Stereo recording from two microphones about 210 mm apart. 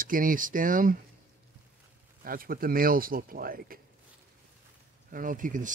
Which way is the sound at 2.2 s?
45° right (ahead or behind).